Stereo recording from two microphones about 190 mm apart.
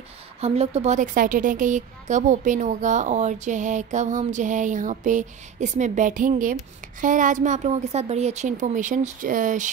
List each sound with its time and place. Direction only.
0.4 s a woman's voice: 35° right (ahead or behind)